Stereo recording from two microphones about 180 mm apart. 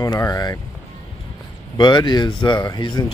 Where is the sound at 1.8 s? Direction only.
25° left (ahead or behind).